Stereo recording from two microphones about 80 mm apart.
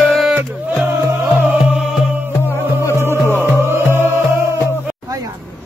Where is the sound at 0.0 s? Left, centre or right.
Centre.